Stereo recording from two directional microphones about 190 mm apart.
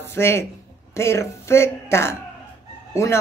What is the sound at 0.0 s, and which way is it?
A woman's voice, 15° left (ahead or behind).